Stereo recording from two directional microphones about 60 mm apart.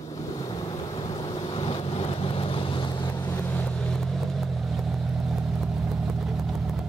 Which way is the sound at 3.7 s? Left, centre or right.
Centre.